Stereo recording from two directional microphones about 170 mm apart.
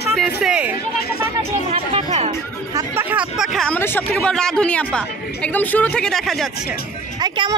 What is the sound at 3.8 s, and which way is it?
Speech, 15° left (ahead or behind).